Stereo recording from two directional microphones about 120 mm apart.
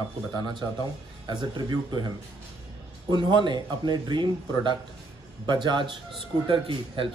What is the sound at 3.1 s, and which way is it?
Speech, 40° right (ahead or behind).